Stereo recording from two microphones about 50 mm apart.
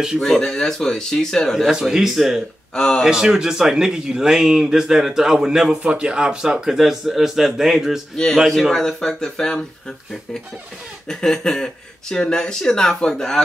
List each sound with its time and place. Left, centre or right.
0.2 s speech: centre
1.7 s speech: centre
2.7 s speech: centre
3.0 s speech: centre
8.5 s speech: centre
11.1 s speech: centre